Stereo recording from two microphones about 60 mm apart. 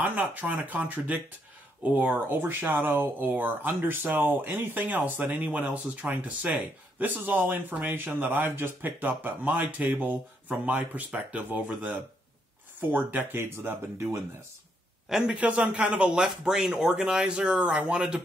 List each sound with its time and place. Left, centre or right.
0.0 s speech: right
13.3 s speech: right
15.0 s a man's voice: centre
15.3 s speech: right